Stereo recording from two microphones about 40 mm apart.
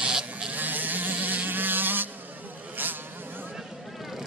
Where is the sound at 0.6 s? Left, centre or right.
Right.